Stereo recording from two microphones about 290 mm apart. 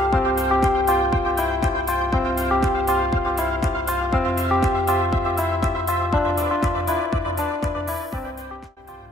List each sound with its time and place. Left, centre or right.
0.1 s music: centre